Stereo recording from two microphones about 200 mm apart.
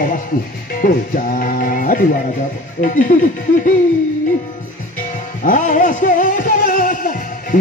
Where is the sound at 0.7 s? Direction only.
45° left (ahead or behind).